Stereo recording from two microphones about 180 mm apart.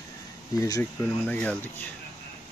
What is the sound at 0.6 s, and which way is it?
Speech, 15° left (ahead or behind).